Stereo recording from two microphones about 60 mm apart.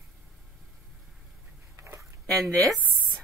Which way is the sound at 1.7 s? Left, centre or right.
Right.